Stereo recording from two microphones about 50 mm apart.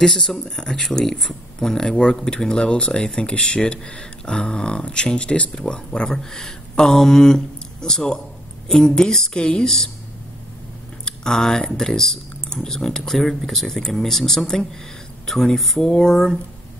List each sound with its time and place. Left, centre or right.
0.0 s speech: centre
11.1 s speech: centre